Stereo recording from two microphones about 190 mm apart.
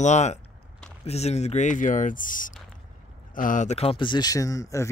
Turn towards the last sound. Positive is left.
turn(degrees=15)  # may be behind; listen again after turning